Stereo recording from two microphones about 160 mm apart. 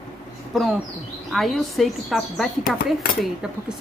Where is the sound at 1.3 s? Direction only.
Centre (ahead or behind).